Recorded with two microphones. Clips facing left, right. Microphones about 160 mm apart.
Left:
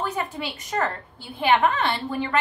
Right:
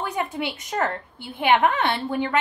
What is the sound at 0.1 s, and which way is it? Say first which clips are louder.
A woman's voice: right 2 dB; 10° right (ahead or behind).